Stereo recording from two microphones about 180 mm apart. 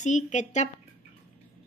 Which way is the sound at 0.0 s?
40° left (ahead or behind).